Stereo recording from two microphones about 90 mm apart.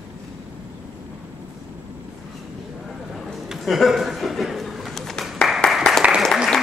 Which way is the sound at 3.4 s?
Centre (ahead or behind).